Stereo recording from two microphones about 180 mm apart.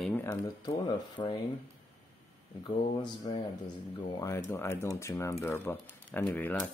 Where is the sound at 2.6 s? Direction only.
25° left (ahead or behind).